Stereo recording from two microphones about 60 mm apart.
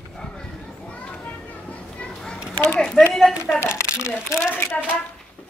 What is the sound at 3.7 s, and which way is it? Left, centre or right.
Speech, centre.